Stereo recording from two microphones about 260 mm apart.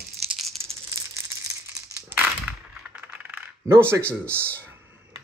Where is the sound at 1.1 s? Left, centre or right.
Centre.